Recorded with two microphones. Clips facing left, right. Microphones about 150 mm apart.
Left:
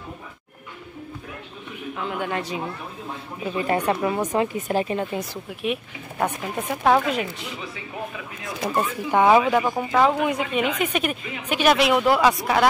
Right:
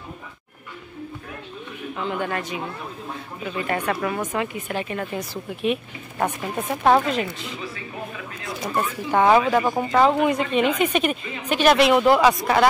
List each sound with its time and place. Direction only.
2.0 s speech: 5° left (ahead or behind)
3.4 s speech: 25° left (ahead or behind)
4.4 s speech: 35° left (ahead or behind)
4.9 s speech: 15° left (ahead or behind)
5.6 s a woman's voice: 5° left (ahead or behind)
7.1 s a woman's voice: 10° left (ahead or behind)